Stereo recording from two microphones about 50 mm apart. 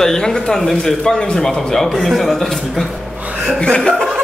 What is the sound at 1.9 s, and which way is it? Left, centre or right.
Speech, centre.